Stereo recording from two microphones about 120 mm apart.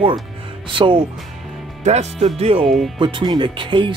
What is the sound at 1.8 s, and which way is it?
Speech, 70° right (ahead or behind).